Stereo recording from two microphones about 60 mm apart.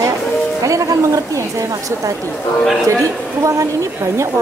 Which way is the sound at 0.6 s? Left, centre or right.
Right.